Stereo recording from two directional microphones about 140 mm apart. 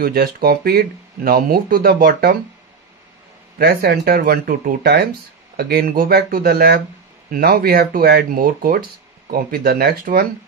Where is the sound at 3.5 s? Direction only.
90° right.